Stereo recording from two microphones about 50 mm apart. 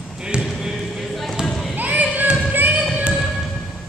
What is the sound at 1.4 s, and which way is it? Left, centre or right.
Basketball bounce, centre.